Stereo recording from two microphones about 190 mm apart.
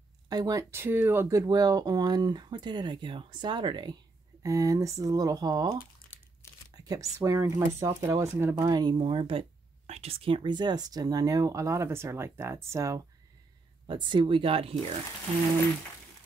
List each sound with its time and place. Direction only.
0.3 s speech: 20° right (ahead or behind)